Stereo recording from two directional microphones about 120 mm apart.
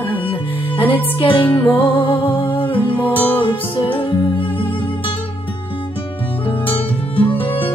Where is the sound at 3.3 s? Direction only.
50° left (ahead or behind).